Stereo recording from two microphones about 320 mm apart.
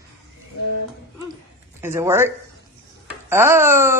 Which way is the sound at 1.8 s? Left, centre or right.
Centre.